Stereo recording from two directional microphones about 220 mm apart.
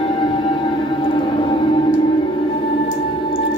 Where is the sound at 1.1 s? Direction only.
20° left (ahead or behind).